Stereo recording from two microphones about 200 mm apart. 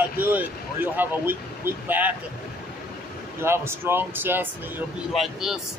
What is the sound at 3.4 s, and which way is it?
Speech, 10° right (ahead or behind).